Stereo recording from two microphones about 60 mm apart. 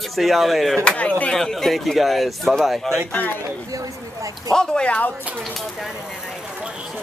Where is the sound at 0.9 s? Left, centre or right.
Left.